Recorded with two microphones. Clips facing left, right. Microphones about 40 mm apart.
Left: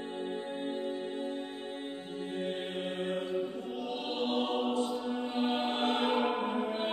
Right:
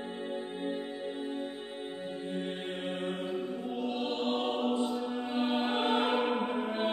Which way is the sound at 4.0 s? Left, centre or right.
Centre.